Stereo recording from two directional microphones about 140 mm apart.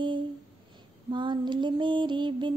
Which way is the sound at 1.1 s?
35° right (ahead or behind).